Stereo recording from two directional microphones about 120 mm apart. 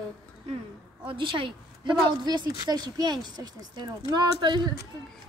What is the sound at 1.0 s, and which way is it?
A woman's voice, 45° right (ahead or behind).